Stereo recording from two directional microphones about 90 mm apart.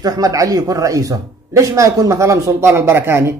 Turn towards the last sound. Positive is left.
turn(degrees=-30)  # may be behind; listen again after turning